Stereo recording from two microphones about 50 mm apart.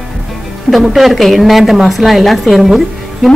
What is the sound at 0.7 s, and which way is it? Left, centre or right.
A woman's voice, centre.